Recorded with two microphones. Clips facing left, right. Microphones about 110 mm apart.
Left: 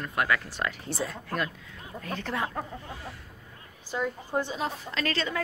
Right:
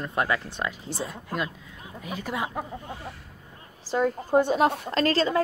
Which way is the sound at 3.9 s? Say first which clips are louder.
Right 8 dB; 40° right (ahead or behind).